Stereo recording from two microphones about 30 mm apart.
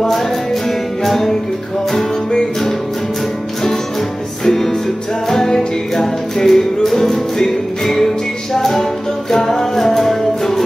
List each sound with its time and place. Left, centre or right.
1.0 s music: centre
4.5 s music: centre